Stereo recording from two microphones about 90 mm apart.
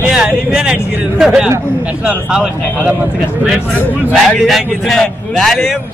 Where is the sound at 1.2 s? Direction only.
5° right (ahead or behind).